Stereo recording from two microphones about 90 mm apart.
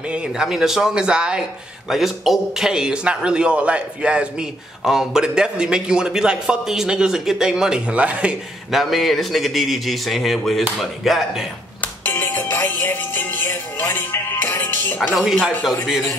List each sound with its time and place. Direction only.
0.1 s a man's voice: 10° right (ahead or behind)
8.7 s a man's voice: centre (ahead or behind)
11.8 s music: 20° left (ahead or behind)
15.4 s a man's voice: centre (ahead or behind)